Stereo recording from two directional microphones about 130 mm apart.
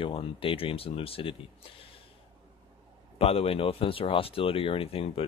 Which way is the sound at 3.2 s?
50° left (ahead or behind).